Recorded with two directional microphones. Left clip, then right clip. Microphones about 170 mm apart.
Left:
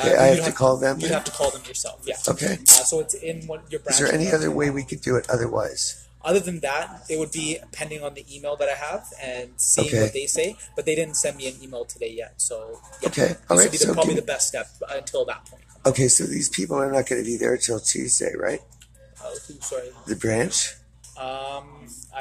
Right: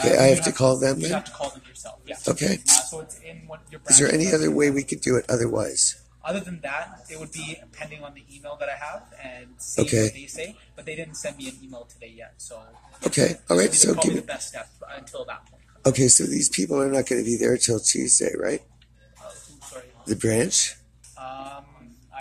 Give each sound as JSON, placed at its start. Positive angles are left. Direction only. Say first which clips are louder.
{"t": 0.1, "sound": "speech", "louder": "left 2 dB", "side_deg": -35}
{"t": 1.7, "sound": "speech", "louder": "left 8 dB", "side_deg": 50}
{"t": 2.2, "sound": "speech", "louder": "right 1 dB", "side_deg": -40}
{"t": 2.7, "sound": "speech", "louder": "left 9 dB", "side_deg": 50}
{"t": 3.9, "sound": "speech", "louder": "right 1 dB", "side_deg": -30}
{"t": 6.2, "sound": "speech", "louder": "left 8 dB", "side_deg": 55}
{"t": 9.8, "sound": "speech", "louder": "left 1 dB", "side_deg": -35}
{"t": 10.1, "sound": "speech", "louder": "left 11 dB", "side_deg": 55}
{"t": 13.1, "sound": "speech", "louder": "even", "side_deg": -35}
{"t": 14.2, "sound": "speech", "louder": "left 7 dB", "side_deg": 50}
{"t": 15.8, "sound": "speech", "louder": "even", "side_deg": -25}
{"t": 20.1, "sound": "speech", "louder": "right 1 dB", "side_deg": -35}
{"t": 21.2, "sound": "speech", "louder": "left 6 dB", "side_deg": 60}